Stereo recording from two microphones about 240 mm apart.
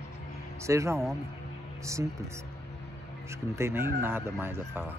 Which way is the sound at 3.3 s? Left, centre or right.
Centre.